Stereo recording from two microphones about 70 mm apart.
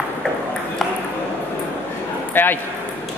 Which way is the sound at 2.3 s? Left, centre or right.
Left.